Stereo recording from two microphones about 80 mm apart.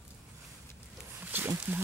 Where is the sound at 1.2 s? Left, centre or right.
Right.